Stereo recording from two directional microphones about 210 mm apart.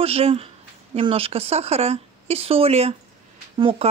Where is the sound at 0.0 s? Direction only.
30° right (ahead or behind).